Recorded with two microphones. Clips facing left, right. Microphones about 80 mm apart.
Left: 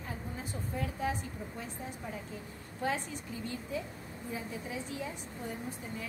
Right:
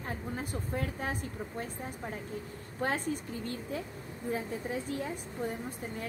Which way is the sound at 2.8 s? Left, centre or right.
Right.